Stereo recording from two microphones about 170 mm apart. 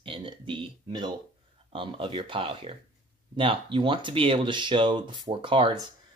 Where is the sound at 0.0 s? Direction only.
30° right (ahead or behind).